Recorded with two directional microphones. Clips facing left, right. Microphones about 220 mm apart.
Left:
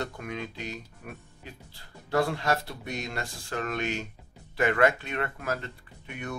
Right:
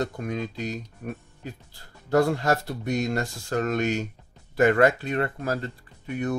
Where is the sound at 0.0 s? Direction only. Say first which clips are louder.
Right 6 dB; 35° right (ahead or behind).